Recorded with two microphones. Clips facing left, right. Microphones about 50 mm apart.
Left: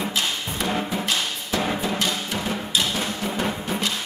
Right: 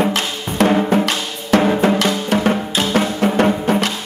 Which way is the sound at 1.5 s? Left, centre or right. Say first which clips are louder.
Right 11 dB; right.